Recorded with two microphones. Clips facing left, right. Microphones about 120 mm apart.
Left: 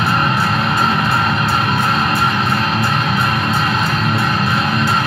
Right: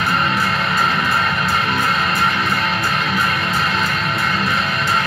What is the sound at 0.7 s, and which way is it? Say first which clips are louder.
Music: left 3 dB; 30° left (ahead or behind).